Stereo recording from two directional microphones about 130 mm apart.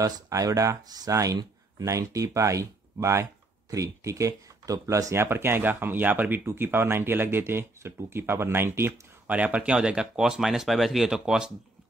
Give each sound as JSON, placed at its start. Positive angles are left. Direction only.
{"t": 0.0, "sound": "speech", "side_deg": -25}